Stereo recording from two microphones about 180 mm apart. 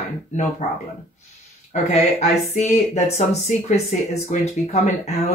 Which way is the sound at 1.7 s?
35° left (ahead or behind).